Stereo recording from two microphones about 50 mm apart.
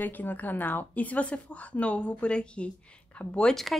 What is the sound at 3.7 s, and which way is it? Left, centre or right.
Speech, centre.